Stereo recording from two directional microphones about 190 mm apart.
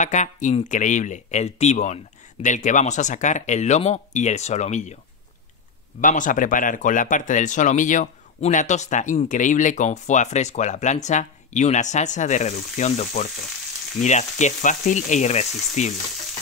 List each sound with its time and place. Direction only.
0.0 s speech: 40° left (ahead or behind)
5.9 s speech: 45° left (ahead or behind)